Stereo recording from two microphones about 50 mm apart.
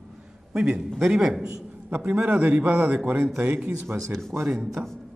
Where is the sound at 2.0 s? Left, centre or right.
Right.